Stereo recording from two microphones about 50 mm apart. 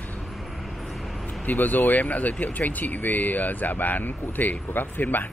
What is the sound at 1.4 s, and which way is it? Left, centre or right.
Speech, left.